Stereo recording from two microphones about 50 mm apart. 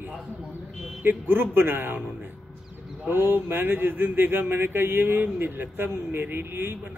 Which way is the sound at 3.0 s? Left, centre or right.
Right.